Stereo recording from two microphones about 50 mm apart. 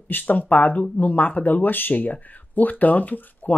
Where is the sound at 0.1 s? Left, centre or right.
Left.